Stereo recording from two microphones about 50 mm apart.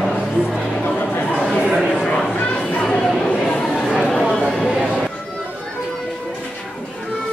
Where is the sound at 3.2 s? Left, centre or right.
Left.